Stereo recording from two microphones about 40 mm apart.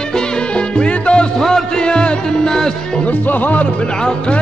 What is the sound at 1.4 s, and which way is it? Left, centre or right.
Music, centre.